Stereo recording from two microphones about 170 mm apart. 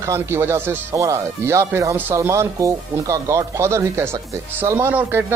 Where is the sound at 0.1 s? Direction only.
15° right (ahead or behind).